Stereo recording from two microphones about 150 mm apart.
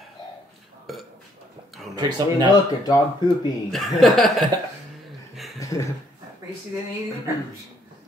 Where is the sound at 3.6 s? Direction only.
Centre (ahead or behind).